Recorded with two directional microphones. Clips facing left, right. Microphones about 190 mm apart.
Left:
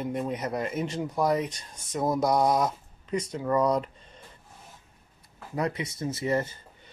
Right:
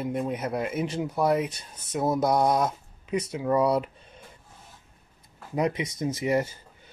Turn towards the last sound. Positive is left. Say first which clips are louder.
# right 2 dB
turn(degrees=-15)  # may be behind; listen again after turning